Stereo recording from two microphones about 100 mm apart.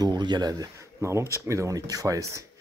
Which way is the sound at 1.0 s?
25° right (ahead or behind).